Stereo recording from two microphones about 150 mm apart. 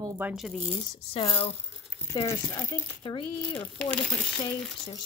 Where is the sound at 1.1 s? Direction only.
35° left (ahead or behind).